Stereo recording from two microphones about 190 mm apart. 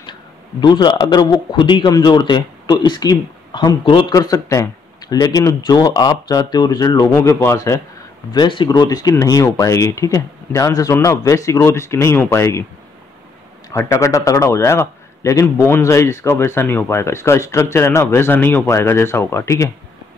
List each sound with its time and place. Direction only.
0.6 s a man's voice: 25° left (ahead or behind)
13.7 s a man's voice: 15° left (ahead or behind)